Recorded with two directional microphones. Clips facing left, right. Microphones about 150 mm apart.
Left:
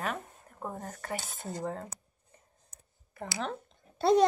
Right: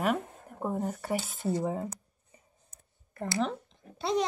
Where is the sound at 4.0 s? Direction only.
50° left (ahead or behind).